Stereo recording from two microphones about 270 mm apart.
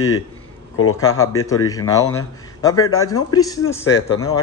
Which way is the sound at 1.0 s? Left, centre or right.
Left.